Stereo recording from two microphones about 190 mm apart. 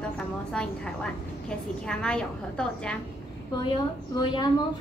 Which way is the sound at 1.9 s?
5° left (ahead or behind).